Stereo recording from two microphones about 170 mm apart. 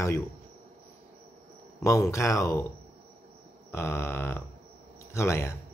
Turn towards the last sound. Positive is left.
turn(degrees=15)  # may be behind; listen again after turning